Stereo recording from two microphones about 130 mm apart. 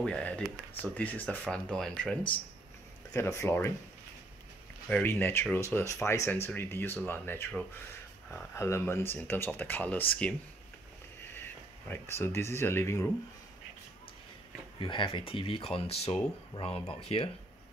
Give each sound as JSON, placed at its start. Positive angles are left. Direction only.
{"t": 0.0, "sound": "speech", "side_deg": 10}
{"t": 3.1, "sound": "speech", "side_deg": 20}
{"t": 4.8, "sound": "speech", "side_deg": 15}
{"t": 11.4, "sound": "speech", "side_deg": 15}
{"t": 14.8, "sound": "speech", "side_deg": 40}